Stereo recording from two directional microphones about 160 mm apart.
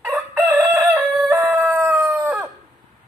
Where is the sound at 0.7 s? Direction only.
10° right (ahead or behind).